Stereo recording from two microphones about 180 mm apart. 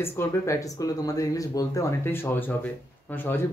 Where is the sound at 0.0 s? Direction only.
15° left (ahead or behind).